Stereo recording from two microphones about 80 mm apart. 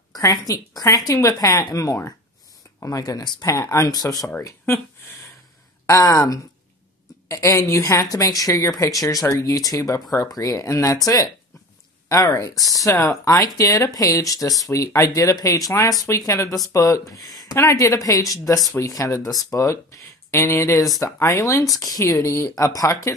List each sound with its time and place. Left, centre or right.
0.1 s speech: left
5.9 s a woman's voice: left
12.5 s speech: centre
12.8 s speech: left
17.6 s a woman's voice: left
21.7 s speech: left
22.0 s a woman's voice: left